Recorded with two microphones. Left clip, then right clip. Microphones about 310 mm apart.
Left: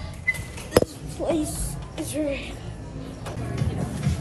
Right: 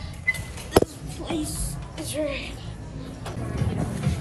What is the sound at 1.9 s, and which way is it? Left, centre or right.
Speech, centre.